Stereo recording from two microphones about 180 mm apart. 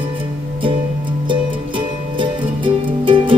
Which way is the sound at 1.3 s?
30° right (ahead or behind).